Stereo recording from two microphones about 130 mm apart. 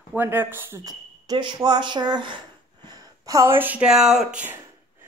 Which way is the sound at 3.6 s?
10° right (ahead or behind).